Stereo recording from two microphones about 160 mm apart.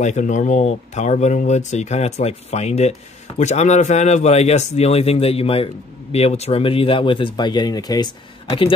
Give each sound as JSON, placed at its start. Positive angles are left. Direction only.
{"t": 0.0, "sound": "speech", "side_deg": 50}